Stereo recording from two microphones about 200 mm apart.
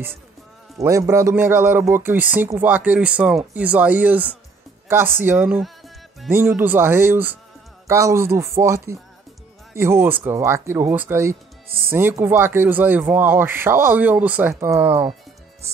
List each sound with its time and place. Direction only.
0.7 s speech: 15° right (ahead or behind)